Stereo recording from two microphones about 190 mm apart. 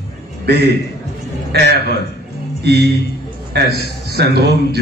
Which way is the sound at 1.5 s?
60° right (ahead or behind).